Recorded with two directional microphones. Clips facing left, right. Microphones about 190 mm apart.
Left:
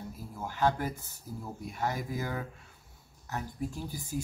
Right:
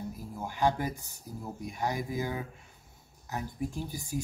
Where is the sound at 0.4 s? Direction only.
15° right (ahead or behind).